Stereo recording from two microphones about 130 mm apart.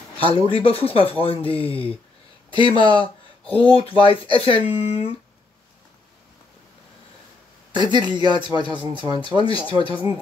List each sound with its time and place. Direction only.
0.5 s speech: 45° left (ahead or behind)
7.7 s speech: 35° right (ahead or behind)
9.4 s speech: 45° left (ahead or behind)